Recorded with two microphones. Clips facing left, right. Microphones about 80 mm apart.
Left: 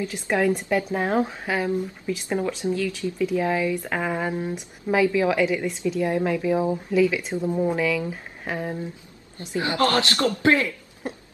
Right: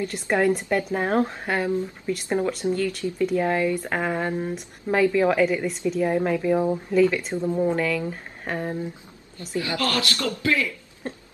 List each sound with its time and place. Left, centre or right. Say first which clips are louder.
0.0 s speech: right 1 dB; centre
2.2 s speech: right 2 dB; centre
2.7 s speech: right 1 dB; centre
9.6 s speech: left 4 dB; left